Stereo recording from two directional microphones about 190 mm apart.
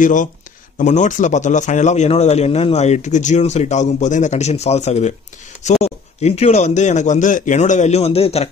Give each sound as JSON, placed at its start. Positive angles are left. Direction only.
{"t": 0.0, "sound": "speech", "side_deg": 40}